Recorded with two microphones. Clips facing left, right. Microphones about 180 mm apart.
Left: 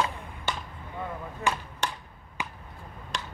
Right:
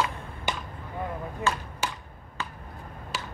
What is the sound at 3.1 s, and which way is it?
Tick-tock, 5° right (ahead or behind).